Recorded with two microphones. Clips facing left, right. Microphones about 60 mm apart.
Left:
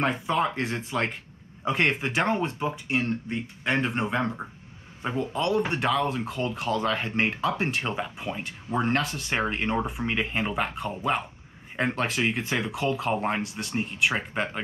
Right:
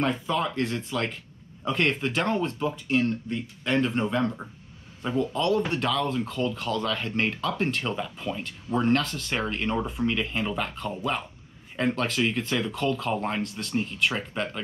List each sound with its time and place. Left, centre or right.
0.0 s speech: left
10.7 s speech: centre
13.4 s speech: centre
13.7 s speech: centre